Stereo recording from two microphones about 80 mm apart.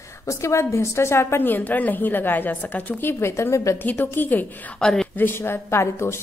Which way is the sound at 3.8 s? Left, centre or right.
Left.